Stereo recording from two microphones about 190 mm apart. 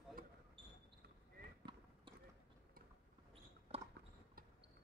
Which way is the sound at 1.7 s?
25° right (ahead or behind).